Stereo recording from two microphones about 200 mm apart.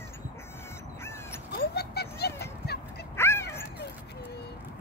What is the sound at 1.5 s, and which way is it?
Dog, 55° left (ahead or behind).